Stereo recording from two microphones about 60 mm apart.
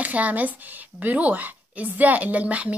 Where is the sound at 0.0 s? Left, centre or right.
Right.